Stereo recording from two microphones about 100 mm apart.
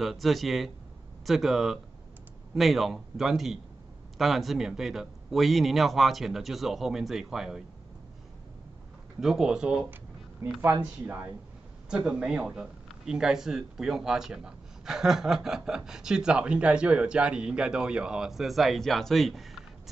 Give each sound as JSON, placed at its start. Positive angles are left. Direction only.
{"t": 0.0, "sound": "speech", "side_deg": 0}
{"t": 9.2, "sound": "speech", "side_deg": -5}
{"t": 10.6, "sound": "speech", "side_deg": -20}
{"t": 12.1, "sound": "speech", "side_deg": -10}